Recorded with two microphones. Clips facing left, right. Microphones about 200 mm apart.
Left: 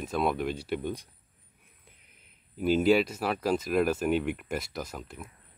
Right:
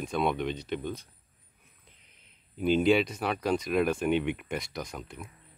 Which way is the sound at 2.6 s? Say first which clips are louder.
Left 1 dB; 5° left (ahead or behind).